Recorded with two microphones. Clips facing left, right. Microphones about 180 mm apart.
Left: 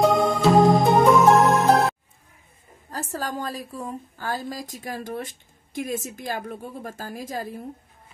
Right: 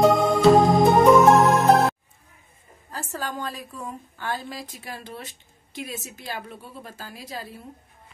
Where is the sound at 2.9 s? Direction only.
40° left (ahead or behind).